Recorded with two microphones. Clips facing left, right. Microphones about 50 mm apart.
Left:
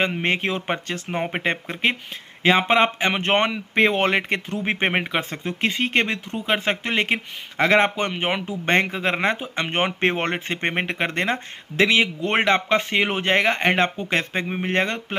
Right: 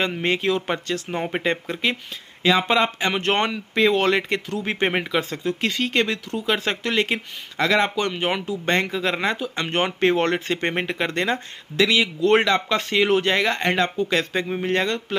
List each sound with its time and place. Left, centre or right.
0.2 s speech: left
3.7 s speech: left